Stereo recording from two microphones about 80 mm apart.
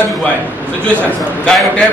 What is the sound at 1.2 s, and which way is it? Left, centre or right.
Speech, centre.